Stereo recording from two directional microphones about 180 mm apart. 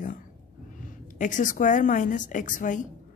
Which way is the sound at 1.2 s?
45° left (ahead or behind).